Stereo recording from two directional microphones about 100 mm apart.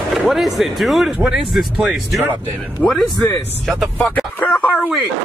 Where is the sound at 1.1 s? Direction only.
15° right (ahead or behind).